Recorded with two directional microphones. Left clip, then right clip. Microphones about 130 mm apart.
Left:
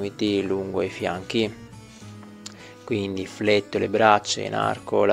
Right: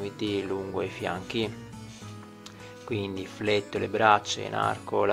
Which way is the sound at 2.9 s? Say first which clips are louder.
Left 5 dB; 40° left (ahead or behind).